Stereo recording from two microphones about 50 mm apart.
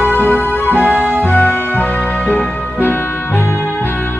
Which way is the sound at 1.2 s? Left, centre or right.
Left.